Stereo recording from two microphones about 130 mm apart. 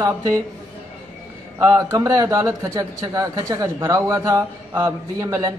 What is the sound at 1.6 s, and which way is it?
A man's voice, 25° right (ahead or behind).